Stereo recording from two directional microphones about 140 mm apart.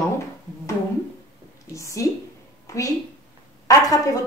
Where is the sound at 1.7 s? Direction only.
20° left (ahead or behind).